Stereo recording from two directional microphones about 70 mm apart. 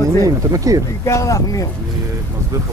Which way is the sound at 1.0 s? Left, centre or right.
Left.